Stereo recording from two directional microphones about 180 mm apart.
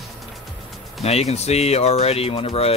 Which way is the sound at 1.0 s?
35° left (ahead or behind).